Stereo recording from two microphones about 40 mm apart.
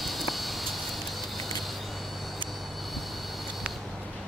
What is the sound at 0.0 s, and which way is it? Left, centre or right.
Vehicle, centre.